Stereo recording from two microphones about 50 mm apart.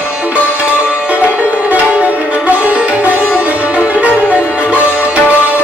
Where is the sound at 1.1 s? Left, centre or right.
Right.